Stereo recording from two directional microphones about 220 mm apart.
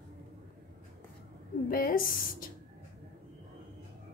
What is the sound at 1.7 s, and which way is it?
Speech, 40° left (ahead or behind).